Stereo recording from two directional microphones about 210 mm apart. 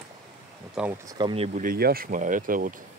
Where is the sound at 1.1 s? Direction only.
25° right (ahead or behind).